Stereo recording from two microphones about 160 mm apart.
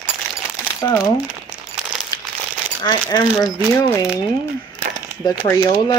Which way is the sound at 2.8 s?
25° left (ahead or behind).